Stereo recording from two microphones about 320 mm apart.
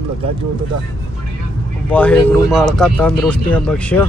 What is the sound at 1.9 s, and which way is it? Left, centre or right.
Speech, centre.